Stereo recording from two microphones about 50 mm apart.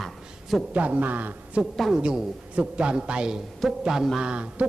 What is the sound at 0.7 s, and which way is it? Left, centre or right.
Speech, right.